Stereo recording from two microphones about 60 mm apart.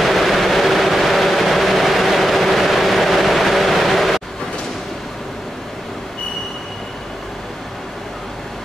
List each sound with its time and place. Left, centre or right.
0.0 s vehicle: centre